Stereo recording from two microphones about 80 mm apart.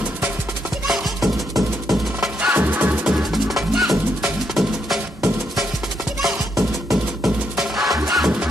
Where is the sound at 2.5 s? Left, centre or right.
Right.